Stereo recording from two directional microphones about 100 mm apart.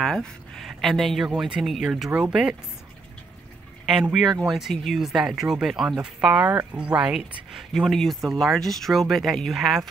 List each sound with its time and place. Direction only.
0.0 s speech: 5° left (ahead or behind)
4.1 s speech: centre (ahead or behind)
6.5 s speech: 25° right (ahead or behind)
6.8 s speech: 10° right (ahead or behind)